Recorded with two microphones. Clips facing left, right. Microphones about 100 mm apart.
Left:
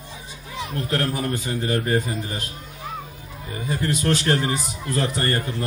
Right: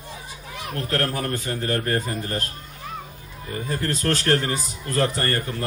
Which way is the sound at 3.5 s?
15° left (ahead or behind).